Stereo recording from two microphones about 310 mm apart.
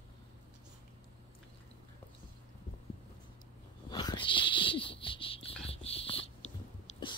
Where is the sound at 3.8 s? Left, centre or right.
Centre.